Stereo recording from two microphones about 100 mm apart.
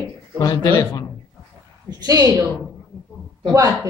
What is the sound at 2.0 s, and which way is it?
Speech, 40° right (ahead or behind).